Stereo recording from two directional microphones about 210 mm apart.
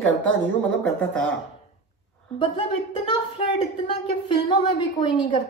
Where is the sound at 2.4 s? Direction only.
25° left (ahead or behind).